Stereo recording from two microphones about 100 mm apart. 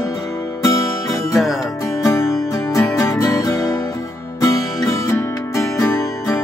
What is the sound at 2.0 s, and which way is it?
Music, 25° left (ahead or behind).